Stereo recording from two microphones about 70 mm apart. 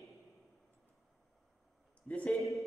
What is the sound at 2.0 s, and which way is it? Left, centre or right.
Speech, centre.